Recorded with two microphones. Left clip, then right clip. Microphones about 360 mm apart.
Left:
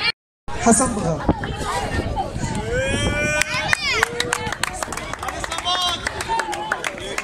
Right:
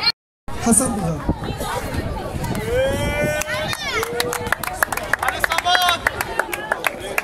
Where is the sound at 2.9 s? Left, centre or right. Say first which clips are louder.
Right 1 dB; right.